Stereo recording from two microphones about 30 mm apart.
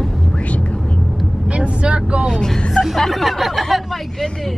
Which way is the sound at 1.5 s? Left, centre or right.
Right.